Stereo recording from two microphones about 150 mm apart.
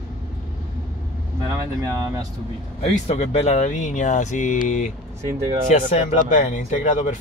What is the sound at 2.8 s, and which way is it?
Speech, 45° left (ahead or behind).